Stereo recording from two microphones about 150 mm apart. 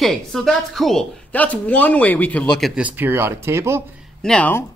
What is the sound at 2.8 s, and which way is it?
Speech, 10° right (ahead or behind).